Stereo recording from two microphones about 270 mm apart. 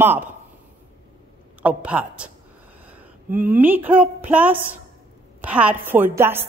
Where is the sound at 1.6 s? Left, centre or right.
Centre.